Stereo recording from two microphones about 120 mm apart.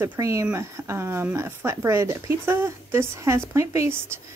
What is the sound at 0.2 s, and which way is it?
Speech, 25° right (ahead or behind).